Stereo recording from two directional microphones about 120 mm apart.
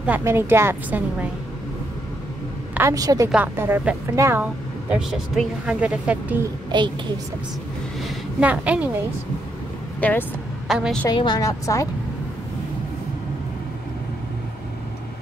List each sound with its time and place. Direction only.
0.2 s a woman's voice: 20° right (ahead or behind)
2.9 s a woman's voice: 30° right (ahead or behind)
3.5 s a woman's voice: 20° right (ahead or behind)
4.4 s speech: 10° right (ahead or behind)
6.7 s a child's voice: 40° right (ahead or behind)
8.4 s speech: 10° right (ahead or behind)
9.9 s speech: 15° left (ahead or behind)
10.7 s a woman's voice: centre (ahead or behind)
11.1 s a woman's voice: 35° left (ahead or behind)